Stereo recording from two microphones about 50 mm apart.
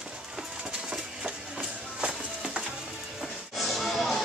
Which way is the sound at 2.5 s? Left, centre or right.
Centre.